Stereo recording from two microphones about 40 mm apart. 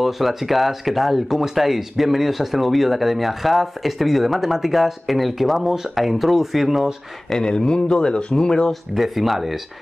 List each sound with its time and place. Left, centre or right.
0.0 s speech: centre
7.2 s speech: centre
8.9 s speech: centre